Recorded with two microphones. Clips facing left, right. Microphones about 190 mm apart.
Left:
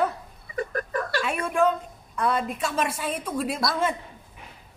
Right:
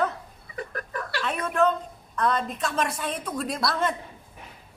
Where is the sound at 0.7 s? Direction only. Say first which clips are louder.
Left 5 dB; 45° left (ahead or behind).